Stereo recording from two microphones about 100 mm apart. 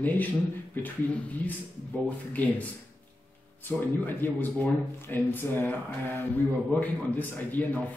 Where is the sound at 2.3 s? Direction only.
15° left (ahead or behind).